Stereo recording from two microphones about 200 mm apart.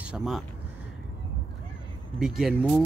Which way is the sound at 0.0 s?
5° right (ahead or behind).